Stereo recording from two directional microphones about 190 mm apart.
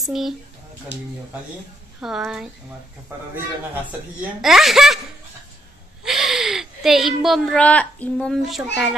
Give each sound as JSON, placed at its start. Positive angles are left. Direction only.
{"t": 0.0, "sound": "speech", "side_deg": 0}
{"t": 0.9, "sound": "speech", "side_deg": 65}
{"t": 2.0, "sound": "speech", "side_deg": 0}
{"t": 4.2, "sound": "speech", "side_deg": 0}
{"t": 6.0, "sound": "speech", "side_deg": 0}